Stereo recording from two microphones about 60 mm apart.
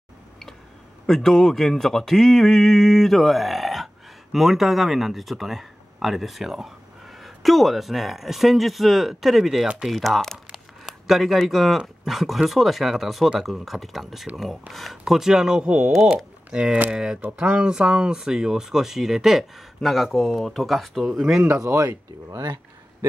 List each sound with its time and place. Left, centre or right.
1.0 s speech: centre
16.4 s speech: right; by 21.3 s centre
21.5 s speech: right